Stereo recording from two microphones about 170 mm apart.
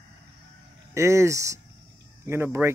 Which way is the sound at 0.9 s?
15° right (ahead or behind).